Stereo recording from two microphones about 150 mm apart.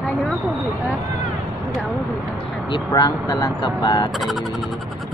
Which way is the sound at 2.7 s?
25° left (ahead or behind).